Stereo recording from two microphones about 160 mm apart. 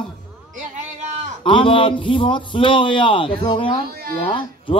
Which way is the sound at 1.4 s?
35° left (ahead or behind).